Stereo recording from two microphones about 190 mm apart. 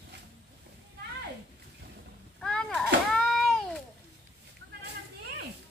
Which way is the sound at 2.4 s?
5° left (ahead or behind).